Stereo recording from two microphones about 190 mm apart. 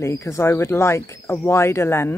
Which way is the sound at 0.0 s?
15° left (ahead or behind).